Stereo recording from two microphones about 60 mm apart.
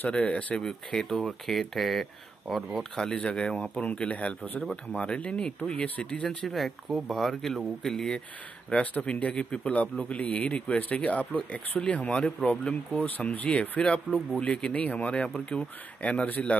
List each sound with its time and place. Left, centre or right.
0.0 s speech: left
0.6 s speech: centre
6.2 s speech: centre
8.9 s speech: left